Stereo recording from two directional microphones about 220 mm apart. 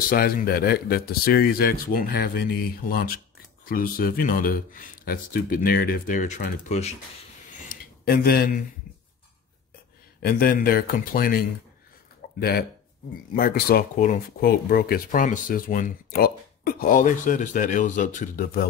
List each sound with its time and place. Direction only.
0.1 s speech: 40° left (ahead or behind)
7.6 s a sound: 40° left (ahead or behind)
10.2 s speech: 40° left (ahead or behind)